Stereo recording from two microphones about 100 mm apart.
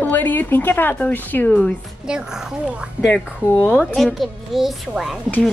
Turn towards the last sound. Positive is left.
turn(degrees=0)  # may be behind; listen again after turning